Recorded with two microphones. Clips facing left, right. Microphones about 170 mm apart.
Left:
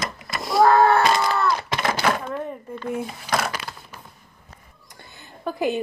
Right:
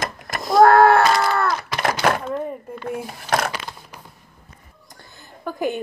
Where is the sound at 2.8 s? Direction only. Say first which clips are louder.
Even; 55° right (ahead or behind).